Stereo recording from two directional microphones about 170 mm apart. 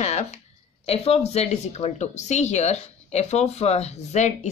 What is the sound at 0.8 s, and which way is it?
Speech, 35° left (ahead or behind).